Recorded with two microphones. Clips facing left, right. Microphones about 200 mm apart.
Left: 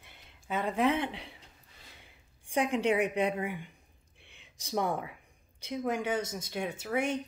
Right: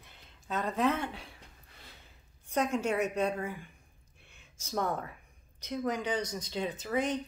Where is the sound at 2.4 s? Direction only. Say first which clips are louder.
Left 2 dB; 15° left (ahead or behind).